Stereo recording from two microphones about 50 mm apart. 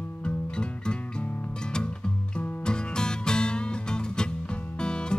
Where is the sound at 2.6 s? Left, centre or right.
Centre.